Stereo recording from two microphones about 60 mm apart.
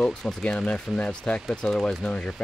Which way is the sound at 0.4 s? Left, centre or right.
Centre.